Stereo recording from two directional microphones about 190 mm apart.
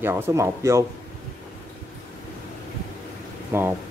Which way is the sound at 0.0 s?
15° right (ahead or behind).